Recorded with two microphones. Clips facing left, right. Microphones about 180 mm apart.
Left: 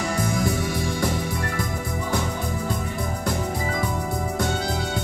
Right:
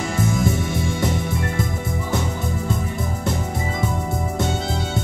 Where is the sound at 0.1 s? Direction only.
25° right (ahead or behind).